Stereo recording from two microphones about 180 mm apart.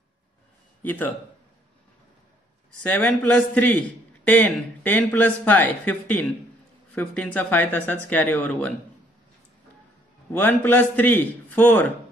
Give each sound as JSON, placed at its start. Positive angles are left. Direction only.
{"t": 2.8, "sound": "a man's voice", "side_deg": 5}
{"t": 10.3, "sound": "a man's voice", "side_deg": 10}